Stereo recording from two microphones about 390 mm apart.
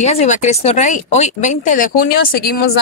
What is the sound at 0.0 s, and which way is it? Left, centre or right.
Speech, centre.